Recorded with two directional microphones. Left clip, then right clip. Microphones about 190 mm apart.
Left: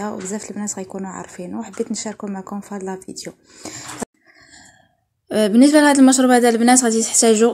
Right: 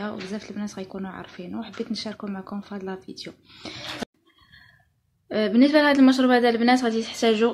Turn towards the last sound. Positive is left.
turn(degrees=35)  # may be behind; listen again after turning